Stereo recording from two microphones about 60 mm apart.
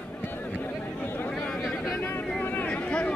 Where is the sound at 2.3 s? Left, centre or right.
Left.